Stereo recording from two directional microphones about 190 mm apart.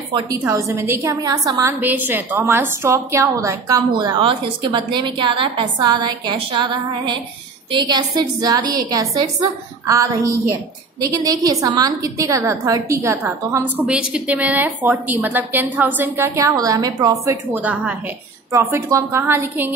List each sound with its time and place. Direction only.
0.1 s a woman's voice: 20° right (ahead or behind)